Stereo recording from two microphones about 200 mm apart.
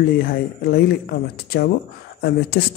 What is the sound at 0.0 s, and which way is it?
Speech, 50° left (ahead or behind).